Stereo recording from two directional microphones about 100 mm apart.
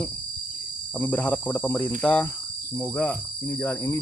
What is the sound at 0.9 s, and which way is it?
Speech, 15° left (ahead or behind).